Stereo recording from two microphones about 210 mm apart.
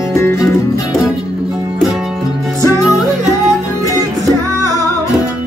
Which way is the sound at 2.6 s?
20° left (ahead or behind).